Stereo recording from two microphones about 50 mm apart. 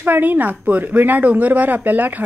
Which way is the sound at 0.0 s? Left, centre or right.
Right.